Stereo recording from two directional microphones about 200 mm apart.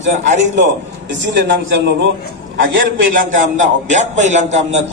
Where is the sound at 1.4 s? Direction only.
60° right (ahead or behind).